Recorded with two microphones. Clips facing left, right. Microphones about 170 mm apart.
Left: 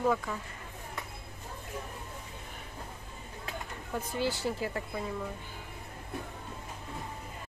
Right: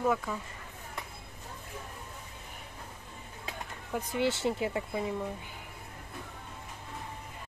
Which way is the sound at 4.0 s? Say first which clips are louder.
Right 2 dB; 20° right (ahead or behind).